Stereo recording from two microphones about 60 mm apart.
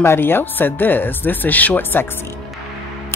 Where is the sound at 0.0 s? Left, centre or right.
Left.